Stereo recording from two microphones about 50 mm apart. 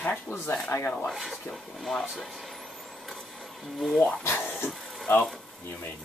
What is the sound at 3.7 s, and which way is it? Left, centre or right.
Speech, centre.